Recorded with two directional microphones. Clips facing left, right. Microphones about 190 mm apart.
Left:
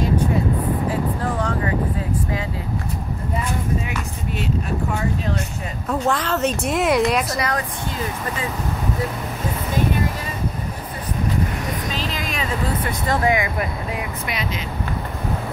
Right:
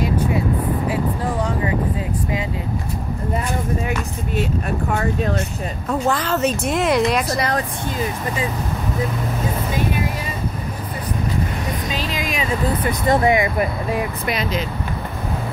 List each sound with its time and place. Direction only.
4.9 s speech: 50° right (ahead or behind)
5.9 s a woman's voice: centre (ahead or behind)
7.3 s speech: 35° right (ahead or behind)
11.9 s vehicle: 15° right (ahead or behind)
13.1 s speech: 25° right (ahead or behind)
14.2 s speech: 40° right (ahead or behind)